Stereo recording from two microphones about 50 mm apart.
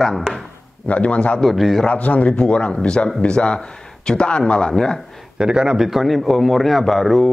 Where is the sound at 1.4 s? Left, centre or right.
Centre.